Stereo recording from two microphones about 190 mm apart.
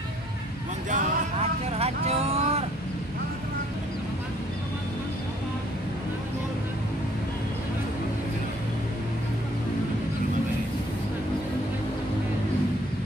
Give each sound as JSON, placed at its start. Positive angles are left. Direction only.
{"t": 0.8, "sound": "vehicle", "side_deg": -40}